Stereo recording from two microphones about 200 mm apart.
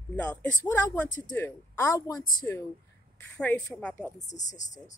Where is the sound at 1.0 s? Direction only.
40° left (ahead or behind).